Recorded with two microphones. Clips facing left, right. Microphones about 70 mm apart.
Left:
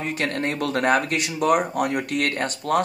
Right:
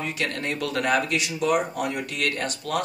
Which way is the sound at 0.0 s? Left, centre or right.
Left.